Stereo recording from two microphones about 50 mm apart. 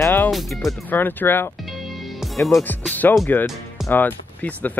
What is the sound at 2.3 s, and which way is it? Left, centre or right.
Speech, centre.